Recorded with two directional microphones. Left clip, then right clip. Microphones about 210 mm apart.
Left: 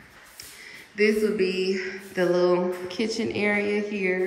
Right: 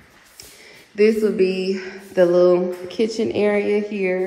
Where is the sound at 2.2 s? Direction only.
Centre (ahead or behind).